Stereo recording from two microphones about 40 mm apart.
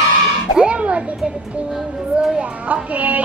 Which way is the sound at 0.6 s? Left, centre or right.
Right.